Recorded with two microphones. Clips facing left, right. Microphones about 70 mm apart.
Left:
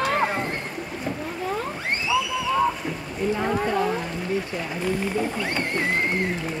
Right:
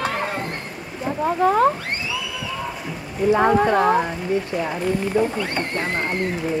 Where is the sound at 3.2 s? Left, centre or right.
Right.